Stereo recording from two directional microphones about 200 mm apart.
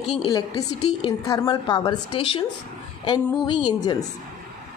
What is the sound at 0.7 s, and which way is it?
Speech, 90° left.